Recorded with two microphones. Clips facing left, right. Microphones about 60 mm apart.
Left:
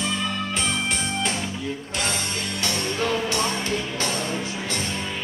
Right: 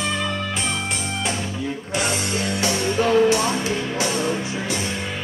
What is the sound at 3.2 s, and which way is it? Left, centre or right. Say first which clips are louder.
Music: right 6 dB; centre.